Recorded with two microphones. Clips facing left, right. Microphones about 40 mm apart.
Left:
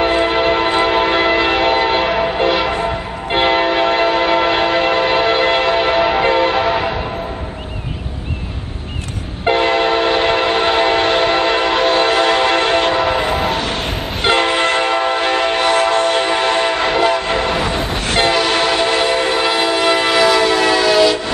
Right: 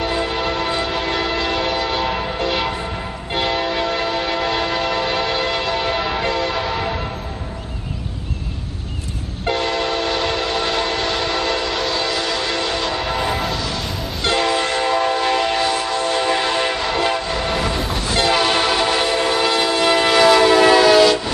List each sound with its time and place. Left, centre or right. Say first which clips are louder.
0.0 s church bell: left 7 dB; left
3.3 s train horn: left 7 dB; left
9.4 s train: left 6 dB; left
15.6 s train: left 6 dB; left
16.3 s train: left 4 dB; left
16.7 s train: left 5 dB; left
18.3 s train: left 2 dB; centre